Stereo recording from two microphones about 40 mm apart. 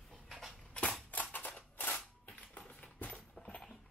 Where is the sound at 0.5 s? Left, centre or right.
Left.